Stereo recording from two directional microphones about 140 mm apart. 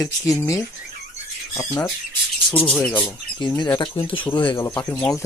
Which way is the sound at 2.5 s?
10° left (ahead or behind).